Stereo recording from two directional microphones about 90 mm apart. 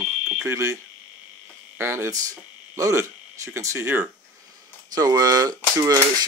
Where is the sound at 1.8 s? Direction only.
30° right (ahead or behind).